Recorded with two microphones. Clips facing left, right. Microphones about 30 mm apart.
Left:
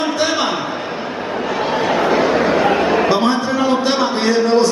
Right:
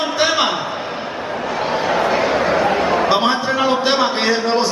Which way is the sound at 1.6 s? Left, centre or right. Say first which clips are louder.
Left 1 dB; centre.